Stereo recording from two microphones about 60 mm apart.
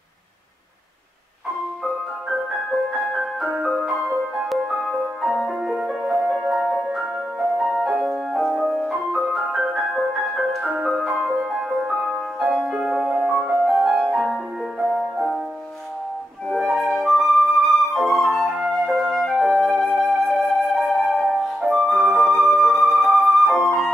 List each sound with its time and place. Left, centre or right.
2.7 s music: centre
3.4 s music: centre
4.5 s music: centre
5.6 s music: centre
12.5 s music: centre
12.8 s music: centre
13.7 s music: centre
16.5 s flute: centre